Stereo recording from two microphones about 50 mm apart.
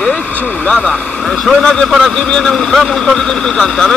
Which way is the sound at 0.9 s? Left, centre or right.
Centre.